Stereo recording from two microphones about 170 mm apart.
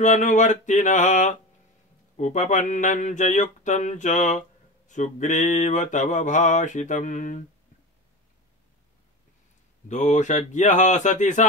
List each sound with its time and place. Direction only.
0.0 s speech: 45° left (ahead or behind)
9.8 s speech: 45° left (ahead or behind)